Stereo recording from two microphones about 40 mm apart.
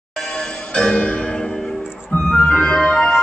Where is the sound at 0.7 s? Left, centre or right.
Left.